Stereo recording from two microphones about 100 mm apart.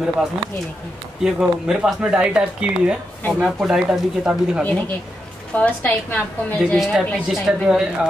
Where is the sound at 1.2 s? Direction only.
5° right (ahead or behind).